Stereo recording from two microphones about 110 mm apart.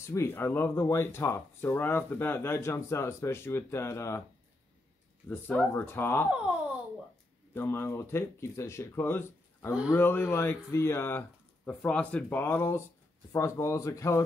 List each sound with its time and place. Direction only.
0.0 s speech: 25° left (ahead or behind)
5.3 s speech: 20° left (ahead or behind)
7.5 s speech: 20° left (ahead or behind)